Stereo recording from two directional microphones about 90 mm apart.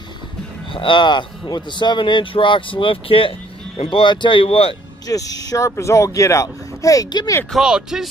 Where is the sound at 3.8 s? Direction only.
75° left (ahead or behind).